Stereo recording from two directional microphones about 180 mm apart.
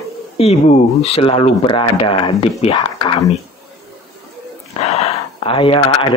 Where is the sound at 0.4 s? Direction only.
35° left (ahead or behind).